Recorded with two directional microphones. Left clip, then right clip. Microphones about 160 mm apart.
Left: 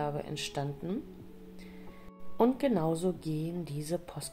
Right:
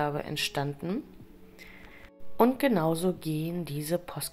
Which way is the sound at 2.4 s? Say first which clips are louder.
Right 4 dB; 20° right (ahead or behind).